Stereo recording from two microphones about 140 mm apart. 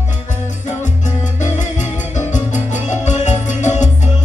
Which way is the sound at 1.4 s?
60° left (ahead or behind).